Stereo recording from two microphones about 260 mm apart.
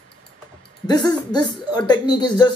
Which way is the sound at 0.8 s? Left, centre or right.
Centre.